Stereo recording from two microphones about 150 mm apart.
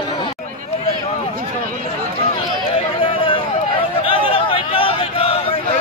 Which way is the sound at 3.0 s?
35° left (ahead or behind).